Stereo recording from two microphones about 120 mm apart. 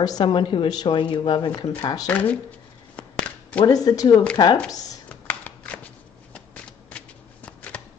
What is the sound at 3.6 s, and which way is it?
Speech, 30° left (ahead or behind).